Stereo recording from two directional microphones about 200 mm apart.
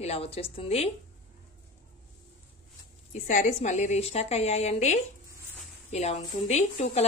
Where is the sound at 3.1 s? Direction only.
40° left (ahead or behind).